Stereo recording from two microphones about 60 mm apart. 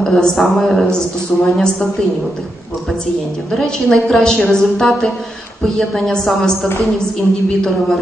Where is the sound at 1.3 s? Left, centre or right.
Left.